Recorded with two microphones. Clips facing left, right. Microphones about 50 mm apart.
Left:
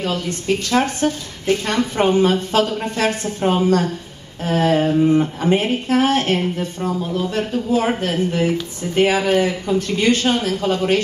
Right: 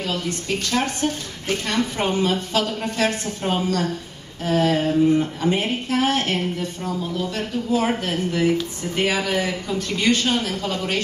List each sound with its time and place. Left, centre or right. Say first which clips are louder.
0.7 s speech: left 4 dB; left
4.9 s speech: left 2 dB; left